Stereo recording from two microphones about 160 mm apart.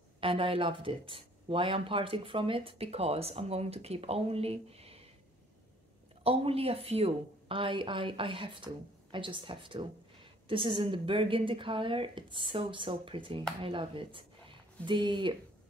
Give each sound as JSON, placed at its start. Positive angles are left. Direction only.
{"t": 0.2, "sound": "speech", "side_deg": -35}
{"t": 6.2, "sound": "speech", "side_deg": -35}